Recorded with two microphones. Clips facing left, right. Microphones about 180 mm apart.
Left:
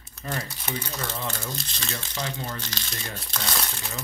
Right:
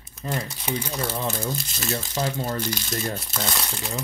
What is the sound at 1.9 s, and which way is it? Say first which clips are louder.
Speech: right 7 dB; 40° right (ahead or behind).